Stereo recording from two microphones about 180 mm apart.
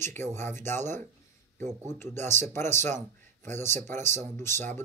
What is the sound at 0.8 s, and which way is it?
Speech, 40° right (ahead or behind).